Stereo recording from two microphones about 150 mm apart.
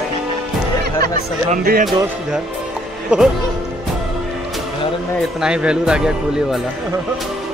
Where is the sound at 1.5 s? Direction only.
85° right.